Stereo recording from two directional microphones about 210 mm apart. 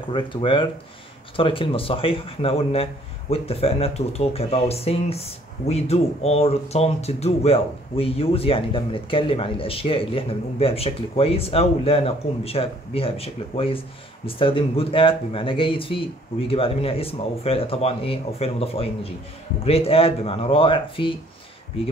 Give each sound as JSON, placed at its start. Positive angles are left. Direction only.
{"t": 0.1, "sound": "speech", "side_deg": 25}